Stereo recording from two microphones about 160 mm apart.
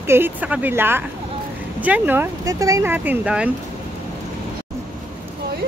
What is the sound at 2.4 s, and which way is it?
Speech, 20° right (ahead or behind).